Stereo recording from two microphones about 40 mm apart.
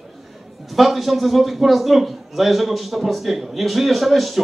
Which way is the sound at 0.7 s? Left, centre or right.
Centre.